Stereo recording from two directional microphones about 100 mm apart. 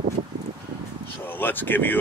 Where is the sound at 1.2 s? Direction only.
20° left (ahead or behind).